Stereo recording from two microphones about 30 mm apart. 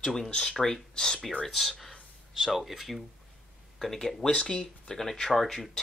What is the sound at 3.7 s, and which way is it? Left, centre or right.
Speech, centre.